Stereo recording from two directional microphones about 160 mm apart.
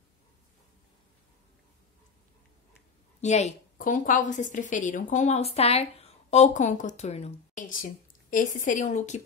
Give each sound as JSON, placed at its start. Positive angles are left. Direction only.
{"t": 3.2, "sound": "a woman's voice", "side_deg": 45}